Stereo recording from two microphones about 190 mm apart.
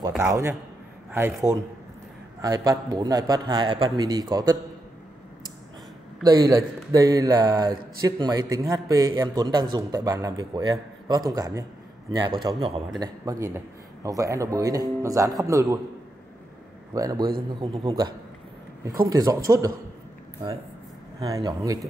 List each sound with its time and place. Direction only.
0.1 s speech: 15° right (ahead or behind)
2.4 s a man's voice: 20° right (ahead or behind)
6.2 s a man's voice: 20° right (ahead or behind)
12.4 s a man's voice: 30° right (ahead or behind)
13.0 s speech: 20° right (ahead or behind)
16.9 s a man's voice: 20° right (ahead or behind)
21.2 s a man's voice: 20° right (ahead or behind)